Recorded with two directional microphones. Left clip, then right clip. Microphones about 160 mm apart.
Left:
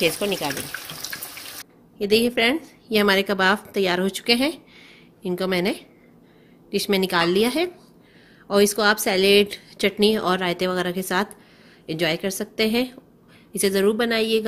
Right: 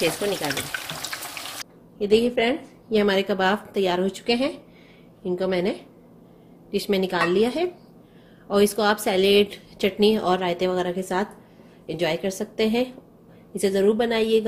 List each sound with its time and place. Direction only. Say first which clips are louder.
2.0 s a woman's voice: even; 50° left (ahead or behind)
8.5 s a woman's voice: left 2 dB; 40° left (ahead or behind)